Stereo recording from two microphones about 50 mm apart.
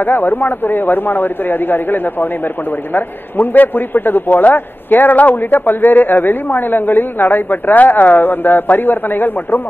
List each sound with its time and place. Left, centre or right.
0.0 s a man's voice: left